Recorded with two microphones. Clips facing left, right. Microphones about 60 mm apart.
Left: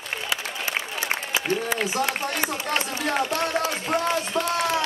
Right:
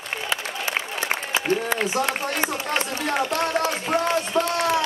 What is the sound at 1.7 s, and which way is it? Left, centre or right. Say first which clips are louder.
Run: right 2 dB; centre.